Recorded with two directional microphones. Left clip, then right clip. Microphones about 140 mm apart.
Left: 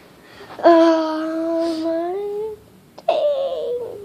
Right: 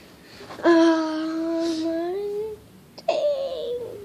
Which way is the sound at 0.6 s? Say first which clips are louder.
Left 5 dB; 35° right (ahead or behind).